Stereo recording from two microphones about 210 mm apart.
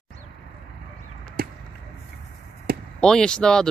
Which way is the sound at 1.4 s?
45° right (ahead or behind).